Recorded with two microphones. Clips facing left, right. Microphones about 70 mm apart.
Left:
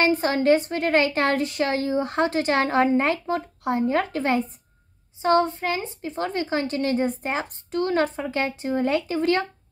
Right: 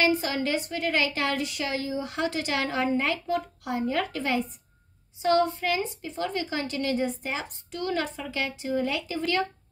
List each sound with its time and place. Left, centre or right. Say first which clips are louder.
0.0 s a woman's voice: left 5 dB; left